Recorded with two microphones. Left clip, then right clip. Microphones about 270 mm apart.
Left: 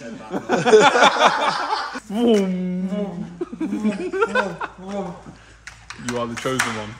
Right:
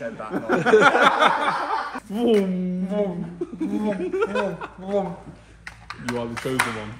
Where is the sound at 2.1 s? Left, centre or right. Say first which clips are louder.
Left 2 dB; left.